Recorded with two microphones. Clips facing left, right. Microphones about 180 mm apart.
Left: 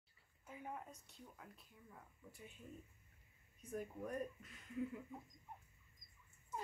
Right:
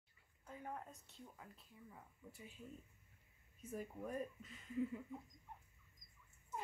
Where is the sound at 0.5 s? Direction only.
5° left (ahead or behind).